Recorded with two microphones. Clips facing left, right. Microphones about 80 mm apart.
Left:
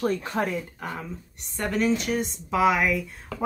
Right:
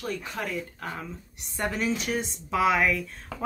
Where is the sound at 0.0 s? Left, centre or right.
Left.